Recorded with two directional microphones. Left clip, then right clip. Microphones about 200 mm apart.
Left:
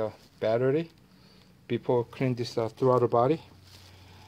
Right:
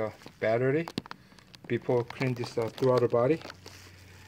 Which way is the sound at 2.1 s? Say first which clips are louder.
Left 2 dB; 15° left (ahead or behind).